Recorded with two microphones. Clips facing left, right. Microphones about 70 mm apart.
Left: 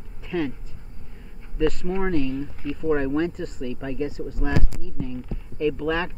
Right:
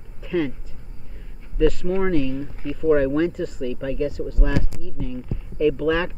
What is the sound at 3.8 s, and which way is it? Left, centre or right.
Speech, centre.